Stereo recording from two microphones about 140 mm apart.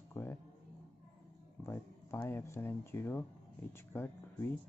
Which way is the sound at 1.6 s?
15° left (ahead or behind).